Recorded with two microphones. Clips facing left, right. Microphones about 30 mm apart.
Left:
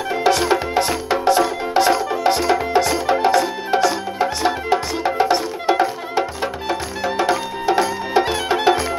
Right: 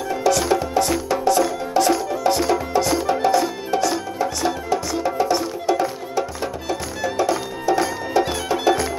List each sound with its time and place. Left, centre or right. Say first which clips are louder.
0.1 s music: left 2 dB; left